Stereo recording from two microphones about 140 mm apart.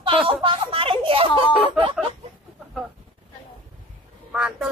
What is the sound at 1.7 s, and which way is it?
Chicken, 40° right (ahead or behind).